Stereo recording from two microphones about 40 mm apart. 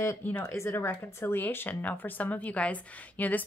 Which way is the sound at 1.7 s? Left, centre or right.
Left.